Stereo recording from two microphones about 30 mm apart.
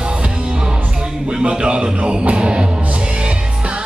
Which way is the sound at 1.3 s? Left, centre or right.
Right.